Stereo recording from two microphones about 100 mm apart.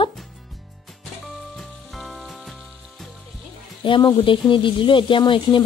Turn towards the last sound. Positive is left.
turn(degrees=55)  # may be behind; listen again after turning